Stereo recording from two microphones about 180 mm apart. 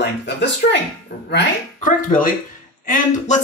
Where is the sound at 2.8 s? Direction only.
50° left (ahead or behind).